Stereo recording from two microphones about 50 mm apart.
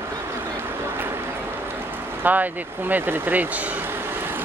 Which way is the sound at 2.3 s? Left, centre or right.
Right.